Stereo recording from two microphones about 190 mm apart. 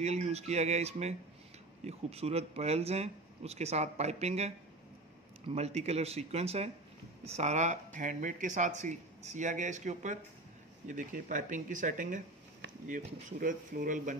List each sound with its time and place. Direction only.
0.0 s speech: 35° right (ahead or behind)